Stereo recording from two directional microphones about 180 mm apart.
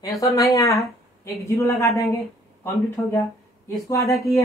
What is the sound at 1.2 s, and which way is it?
Speech, 15° left (ahead or behind).